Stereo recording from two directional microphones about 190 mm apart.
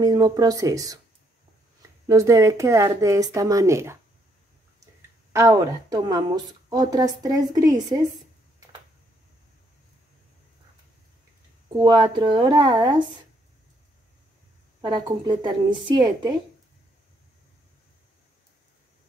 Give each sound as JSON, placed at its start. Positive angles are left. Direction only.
{"t": 0.0, "sound": "a woman's voice", "side_deg": -20}
{"t": 2.0, "sound": "speech", "side_deg": -15}
{"t": 5.3, "sound": "a woman's voice", "side_deg": -15}
{"t": 11.7, "sound": "a woman's voice", "side_deg": -20}
{"t": 14.8, "sound": "a woman's voice", "side_deg": -25}